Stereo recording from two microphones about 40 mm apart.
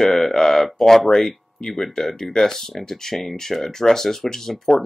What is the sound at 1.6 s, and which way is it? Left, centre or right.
Speech, centre.